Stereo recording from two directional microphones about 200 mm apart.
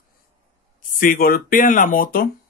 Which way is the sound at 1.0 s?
45° left (ahead or behind).